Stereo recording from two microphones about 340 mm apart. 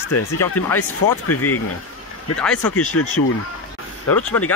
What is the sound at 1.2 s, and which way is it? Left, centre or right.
Speech, left.